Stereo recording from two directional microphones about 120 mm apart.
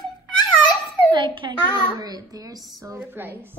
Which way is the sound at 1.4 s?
35° right (ahead or behind).